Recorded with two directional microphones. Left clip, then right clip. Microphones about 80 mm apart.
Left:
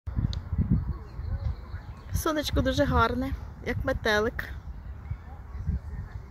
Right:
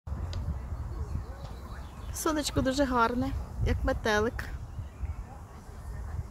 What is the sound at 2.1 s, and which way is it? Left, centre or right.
Speech, centre.